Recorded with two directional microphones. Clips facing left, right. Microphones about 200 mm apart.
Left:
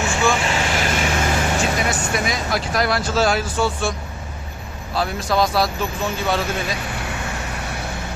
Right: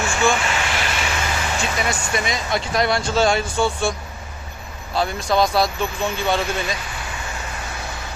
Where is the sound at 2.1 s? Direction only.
Centre (ahead or behind).